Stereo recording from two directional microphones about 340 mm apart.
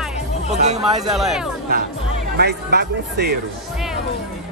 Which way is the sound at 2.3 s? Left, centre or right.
Right.